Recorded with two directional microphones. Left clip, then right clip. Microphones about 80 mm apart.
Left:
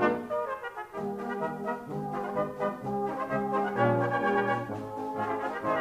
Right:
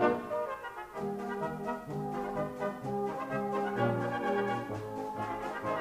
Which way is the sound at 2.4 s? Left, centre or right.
Left.